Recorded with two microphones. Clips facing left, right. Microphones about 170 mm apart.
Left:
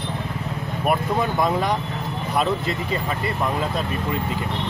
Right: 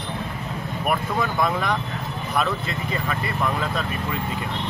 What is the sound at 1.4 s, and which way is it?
Speech, 30° left (ahead or behind).